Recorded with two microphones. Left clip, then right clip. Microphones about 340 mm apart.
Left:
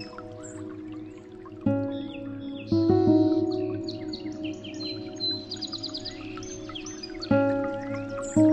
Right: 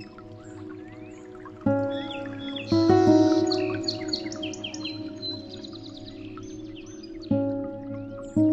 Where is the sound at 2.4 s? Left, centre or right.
Right.